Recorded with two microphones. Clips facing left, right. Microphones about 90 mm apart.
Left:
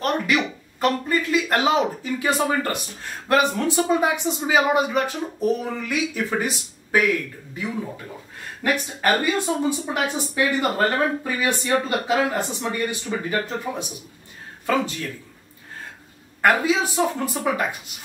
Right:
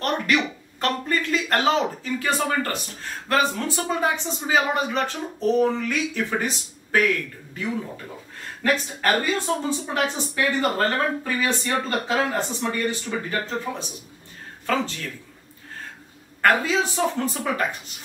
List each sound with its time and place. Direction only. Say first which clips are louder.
0.0 s a woman's voice: left 1 dB; 5° left (ahead or behind)
8.6 s a woman's voice: left 1 dB; 15° left (ahead or behind)
16.3 s a woman's voice: left 1 dB; 15° left (ahead or behind)